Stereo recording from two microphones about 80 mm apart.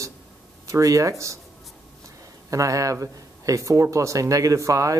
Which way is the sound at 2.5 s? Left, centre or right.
Right.